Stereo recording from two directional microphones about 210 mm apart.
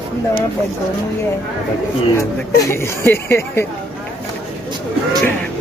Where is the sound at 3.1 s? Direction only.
10° left (ahead or behind).